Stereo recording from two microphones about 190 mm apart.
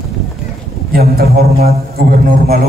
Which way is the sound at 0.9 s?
55° right (ahead or behind).